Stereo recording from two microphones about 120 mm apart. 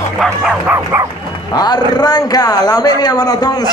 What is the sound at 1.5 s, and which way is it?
A man's voice, 35° left (ahead or behind).